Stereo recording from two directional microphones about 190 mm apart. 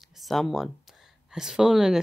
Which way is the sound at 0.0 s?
Centre (ahead or behind).